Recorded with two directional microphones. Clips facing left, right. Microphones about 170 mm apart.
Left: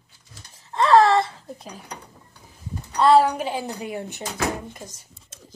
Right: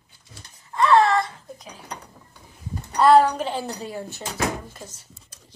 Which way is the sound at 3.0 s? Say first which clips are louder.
Right 1 dB; centre (ahead or behind).